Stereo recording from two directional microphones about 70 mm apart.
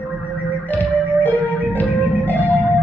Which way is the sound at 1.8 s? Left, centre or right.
Left.